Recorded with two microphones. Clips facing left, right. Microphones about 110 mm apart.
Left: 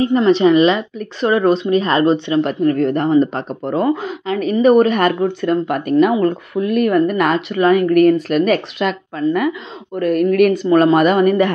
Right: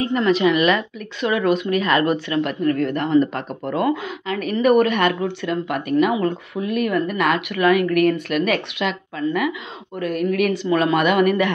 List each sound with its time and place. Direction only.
0.0 s speech: 30° left (ahead or behind)
0.9 s speech: 35° left (ahead or behind)